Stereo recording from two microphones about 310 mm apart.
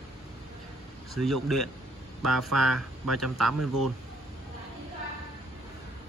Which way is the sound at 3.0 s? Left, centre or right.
Right.